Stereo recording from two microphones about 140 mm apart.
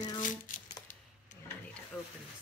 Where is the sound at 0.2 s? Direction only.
65° left (ahead or behind).